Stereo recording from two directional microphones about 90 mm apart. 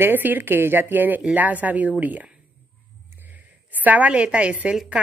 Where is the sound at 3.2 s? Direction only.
20° right (ahead or behind).